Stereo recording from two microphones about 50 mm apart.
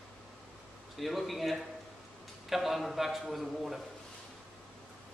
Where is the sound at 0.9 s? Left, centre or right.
Centre.